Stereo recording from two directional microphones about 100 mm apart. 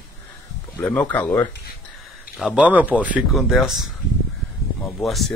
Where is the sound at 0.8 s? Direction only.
15° left (ahead or behind).